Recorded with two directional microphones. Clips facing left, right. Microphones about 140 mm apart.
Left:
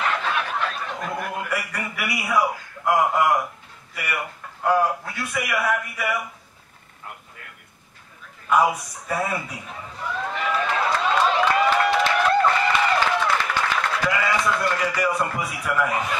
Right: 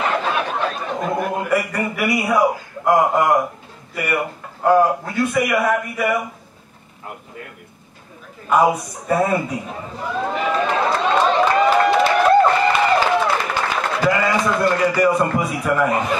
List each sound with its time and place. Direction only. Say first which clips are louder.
0.0 s chuckle: right 4 dB; 30° right (ahead or behind)
2.1 s a man's voice: right 4 dB; 20° right (ahead or behind)
8.5 s speech: right 4 dB; 25° right (ahead or behind)
9.0 s a sound: right 8 dB; 25° right (ahead or behind)
15.4 s speech: right 6 dB; 25° right (ahead or behind)